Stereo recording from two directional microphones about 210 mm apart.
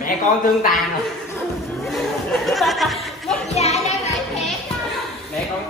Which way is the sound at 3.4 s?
30° left (ahead or behind).